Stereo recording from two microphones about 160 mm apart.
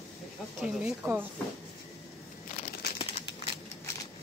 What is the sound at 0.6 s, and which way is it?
Speech, 5° right (ahead or behind).